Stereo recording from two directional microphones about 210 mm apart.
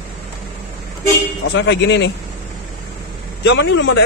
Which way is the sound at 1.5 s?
60° left (ahead or behind).